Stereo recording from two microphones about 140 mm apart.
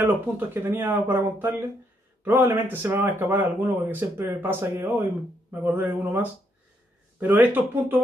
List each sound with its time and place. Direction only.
0.0 s speech: 15° right (ahead or behind)